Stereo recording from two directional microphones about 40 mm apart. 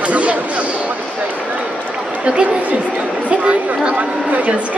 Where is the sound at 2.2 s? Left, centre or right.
Right.